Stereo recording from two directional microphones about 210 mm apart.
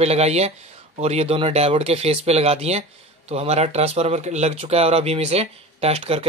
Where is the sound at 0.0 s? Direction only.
30° right (ahead or behind).